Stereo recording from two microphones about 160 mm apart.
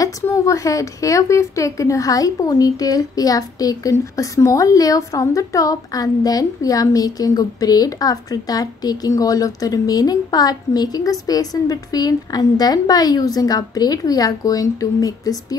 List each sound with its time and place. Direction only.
0.0 s speech: 20° left (ahead or behind)